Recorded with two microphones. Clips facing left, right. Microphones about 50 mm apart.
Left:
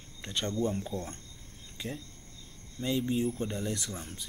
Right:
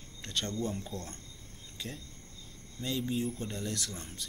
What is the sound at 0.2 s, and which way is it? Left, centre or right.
Speech, centre.